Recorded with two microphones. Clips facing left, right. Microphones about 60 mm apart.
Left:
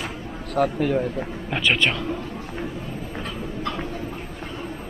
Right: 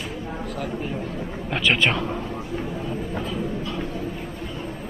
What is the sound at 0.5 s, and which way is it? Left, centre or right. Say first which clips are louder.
Speech: left 11 dB; left.